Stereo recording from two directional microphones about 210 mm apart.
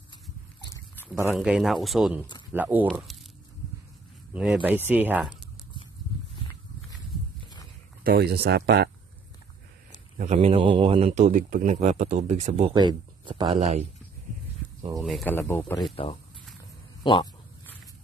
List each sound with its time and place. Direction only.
1.3 s speech: centre (ahead or behind)
4.3 s speech: 5° right (ahead or behind)
8.0 s speech: 50° right (ahead or behind)
10.1 s a man's voice: 30° right (ahead or behind)
15.0 s speech: centre (ahead or behind)
16.0 s speech: 25° left (ahead or behind)